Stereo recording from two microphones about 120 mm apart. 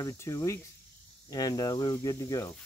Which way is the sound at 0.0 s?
30° left (ahead or behind).